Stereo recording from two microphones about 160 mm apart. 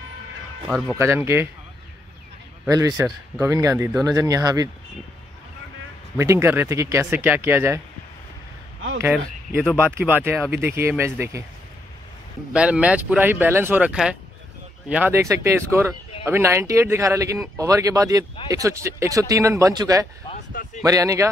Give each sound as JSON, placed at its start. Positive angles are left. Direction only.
{"t": 0.7, "sound": "speech", "side_deg": 0}
{"t": 0.9, "sound": "speech", "side_deg": -15}
{"t": 2.7, "sound": "speech", "side_deg": -20}
{"t": 6.1, "sound": "speech", "side_deg": -15}
{"t": 9.0, "sound": "speech", "side_deg": -10}
{"t": 12.5, "sound": "speech", "side_deg": -5}